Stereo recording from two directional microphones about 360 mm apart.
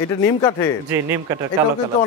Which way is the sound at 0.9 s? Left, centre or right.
Centre.